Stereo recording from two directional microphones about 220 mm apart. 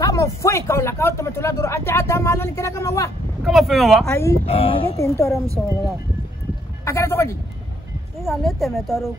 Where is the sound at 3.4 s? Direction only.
Centre (ahead or behind).